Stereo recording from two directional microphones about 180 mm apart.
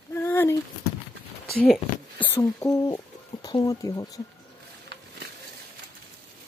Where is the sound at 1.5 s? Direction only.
55° left (ahead or behind).